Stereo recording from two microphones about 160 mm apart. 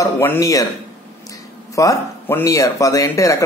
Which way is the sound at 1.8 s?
20° left (ahead or behind).